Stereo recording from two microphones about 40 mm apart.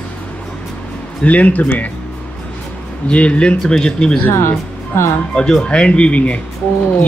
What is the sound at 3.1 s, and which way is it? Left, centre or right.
Speech, left.